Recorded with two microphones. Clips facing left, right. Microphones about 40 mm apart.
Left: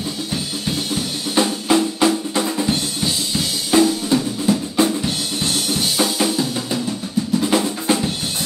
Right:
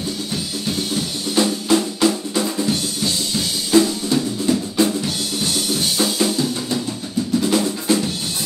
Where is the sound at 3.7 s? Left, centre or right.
Centre.